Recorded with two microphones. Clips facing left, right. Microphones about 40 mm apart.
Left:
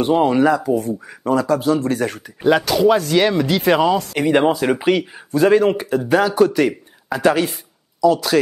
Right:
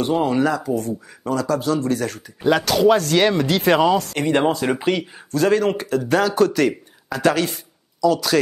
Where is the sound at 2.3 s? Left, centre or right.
Centre.